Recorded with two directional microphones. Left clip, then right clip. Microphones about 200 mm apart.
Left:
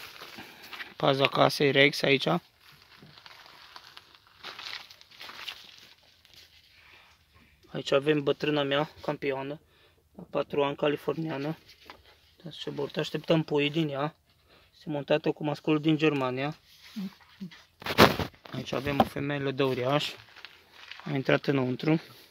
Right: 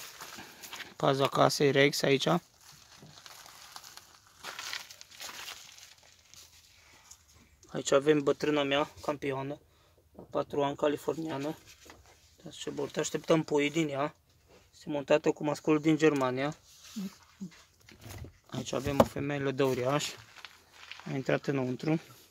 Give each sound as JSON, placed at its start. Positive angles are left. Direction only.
{"t": 0.4, "sound": "dog", "side_deg": 5}
{"t": 0.9, "sound": "speech", "side_deg": 5}
{"t": 3.3, "sound": "crushing", "side_deg": 0}
{"t": 7.7, "sound": "speech", "side_deg": 0}
{"t": 18.5, "sound": "speech", "side_deg": 0}
{"t": 21.0, "sound": "speech", "side_deg": 25}